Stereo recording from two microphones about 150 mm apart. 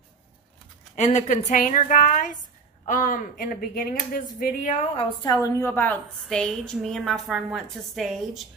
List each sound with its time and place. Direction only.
0.9 s a woman's voice: 50° left (ahead or behind)
4.9 s a woman's voice: 25° left (ahead or behind); by 8.2 s centre (ahead or behind)